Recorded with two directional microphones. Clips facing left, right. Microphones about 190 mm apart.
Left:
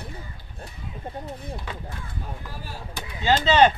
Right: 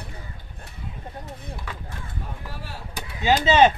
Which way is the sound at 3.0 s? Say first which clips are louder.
Right 1 dB; 15° right (ahead or behind).